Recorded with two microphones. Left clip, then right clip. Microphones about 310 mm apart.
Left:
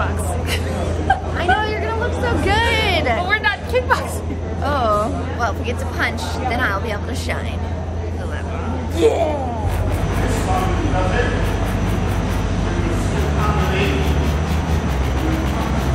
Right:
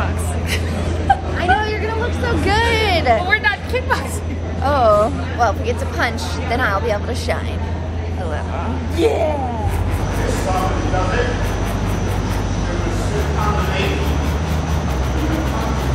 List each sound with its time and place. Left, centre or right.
1.1 s whimper: centre
1.4 s vehicle: centre
2.2 s hubbub: centre
4.6 s speech: centre
8.9 s speech: centre